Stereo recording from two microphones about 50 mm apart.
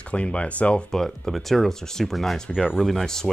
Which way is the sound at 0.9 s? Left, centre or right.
Centre.